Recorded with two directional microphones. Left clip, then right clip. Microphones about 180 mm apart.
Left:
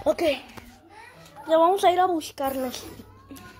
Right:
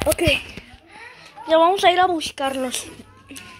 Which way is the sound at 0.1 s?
5° right (ahead or behind).